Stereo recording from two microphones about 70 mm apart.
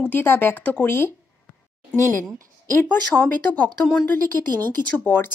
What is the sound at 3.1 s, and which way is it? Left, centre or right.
A woman's voice, left.